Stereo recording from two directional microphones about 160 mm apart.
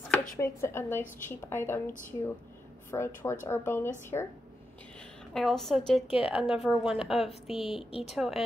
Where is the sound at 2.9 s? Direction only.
15° left (ahead or behind).